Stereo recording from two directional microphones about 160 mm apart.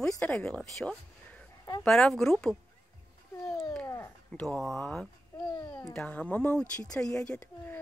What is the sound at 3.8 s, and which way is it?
Cat, 15° left (ahead or behind).